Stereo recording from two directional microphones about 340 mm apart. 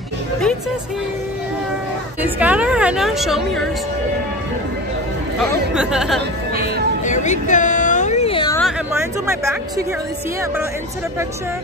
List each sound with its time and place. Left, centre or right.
2.2 s a woman's voice: centre
5.4 s a woman's voice: centre
7.1 s a sound: left